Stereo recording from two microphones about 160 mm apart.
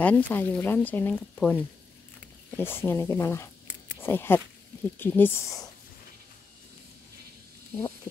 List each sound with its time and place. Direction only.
0.0 s speech: 10° left (ahead or behind)